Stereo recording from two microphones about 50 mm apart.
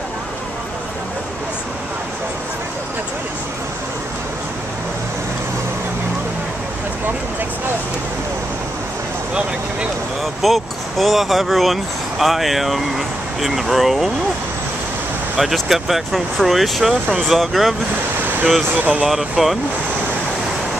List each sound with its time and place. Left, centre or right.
10.4 s speech: centre
15.3 s speech: centre
18.2 s vehicle: right
18.8 s speech: right
19.0 s speech: centre